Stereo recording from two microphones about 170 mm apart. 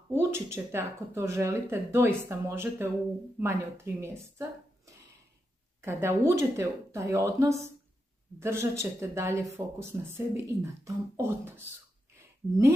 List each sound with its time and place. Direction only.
0.1 s a woman's voice: 15° right (ahead or behind)